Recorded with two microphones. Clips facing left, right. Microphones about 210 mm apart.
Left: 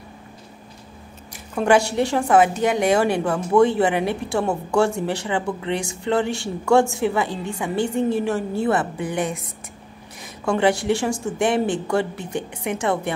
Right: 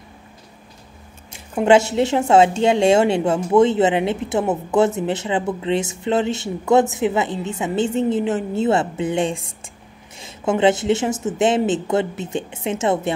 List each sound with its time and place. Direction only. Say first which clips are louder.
1.3 s a woman's voice: right 3 dB; 20° right (ahead or behind)